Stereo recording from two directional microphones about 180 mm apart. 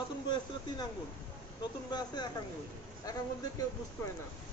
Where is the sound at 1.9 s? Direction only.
25° left (ahead or behind).